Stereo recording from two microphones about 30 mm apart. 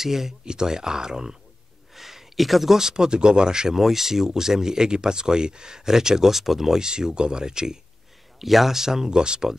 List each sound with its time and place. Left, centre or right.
0.0 s speech: centre
0.5 s speech: right
2.0 s speech: centre
3.8 s speech: centre
6.8 s speech: right
8.4 s speech: centre
9.1 s speech: right